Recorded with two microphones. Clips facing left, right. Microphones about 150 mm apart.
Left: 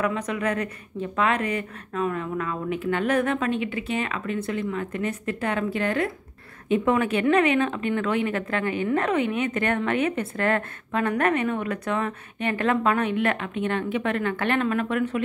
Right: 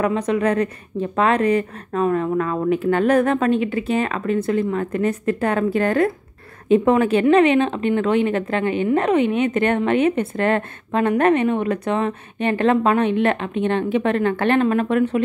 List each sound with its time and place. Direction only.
0.0 s a woman's voice: 30° right (ahead or behind)